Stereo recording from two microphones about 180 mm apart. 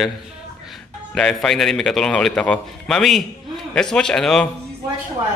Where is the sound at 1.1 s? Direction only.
5° left (ahead or behind).